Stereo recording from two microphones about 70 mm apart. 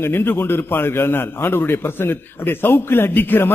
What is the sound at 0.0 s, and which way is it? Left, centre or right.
A man's voice, left.